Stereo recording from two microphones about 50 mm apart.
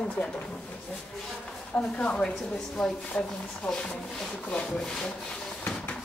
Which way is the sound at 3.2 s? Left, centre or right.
Left.